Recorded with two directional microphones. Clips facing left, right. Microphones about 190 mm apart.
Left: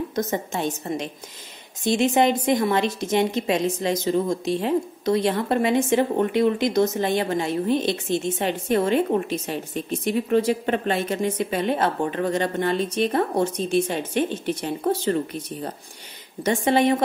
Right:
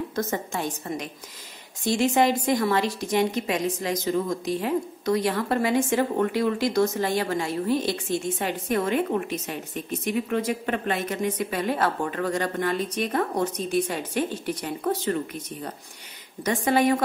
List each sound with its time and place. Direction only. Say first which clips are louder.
0.1 s a woman's voice: left 2 dB; 20° left (ahead or behind)